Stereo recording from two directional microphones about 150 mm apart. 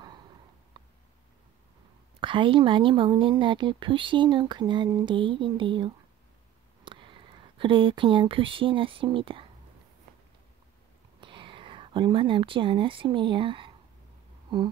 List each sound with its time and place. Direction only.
2.1 s speech: 35° right (ahead or behind)
11.1 s speech: 35° right (ahead or behind)